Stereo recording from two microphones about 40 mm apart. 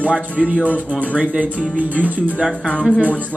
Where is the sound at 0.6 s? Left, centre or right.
Left.